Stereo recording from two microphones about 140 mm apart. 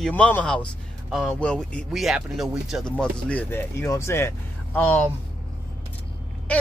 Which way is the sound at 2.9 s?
10° left (ahead or behind).